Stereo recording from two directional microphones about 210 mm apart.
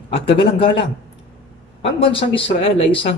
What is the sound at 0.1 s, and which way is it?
Speech, 25° left (ahead or behind).